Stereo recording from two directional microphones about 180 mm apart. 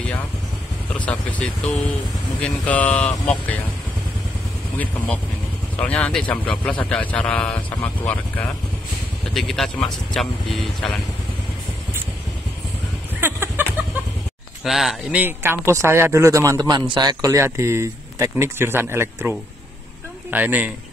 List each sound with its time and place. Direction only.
0.9 s speech: 5° left (ahead or behind)
2.4 s speech: 5° left (ahead or behind)
5.8 s speech: 5° left (ahead or behind)
13.2 s a sound: 10° right (ahead or behind)
14.6 s speech: centre (ahead or behind)